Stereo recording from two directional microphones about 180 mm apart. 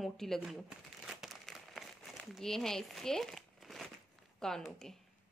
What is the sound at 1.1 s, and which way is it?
Crumpling, centre (ahead or behind).